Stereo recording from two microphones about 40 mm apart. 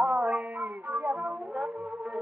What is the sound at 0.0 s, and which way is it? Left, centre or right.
Music, right.